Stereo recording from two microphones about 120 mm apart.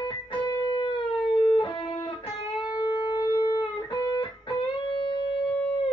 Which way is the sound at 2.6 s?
35° left (ahead or behind).